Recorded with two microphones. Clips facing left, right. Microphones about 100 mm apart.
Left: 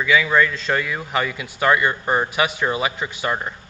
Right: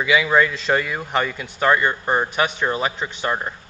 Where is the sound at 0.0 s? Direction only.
5° right (ahead or behind).